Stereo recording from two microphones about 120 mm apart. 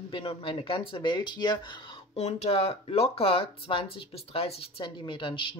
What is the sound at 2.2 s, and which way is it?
Speech, 60° left (ahead or behind).